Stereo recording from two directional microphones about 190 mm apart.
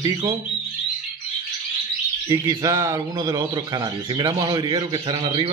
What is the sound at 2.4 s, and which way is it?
Speech, 15° right (ahead or behind).